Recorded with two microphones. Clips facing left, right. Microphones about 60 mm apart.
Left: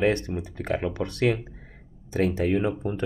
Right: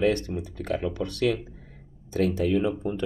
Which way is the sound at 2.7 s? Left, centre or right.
Left.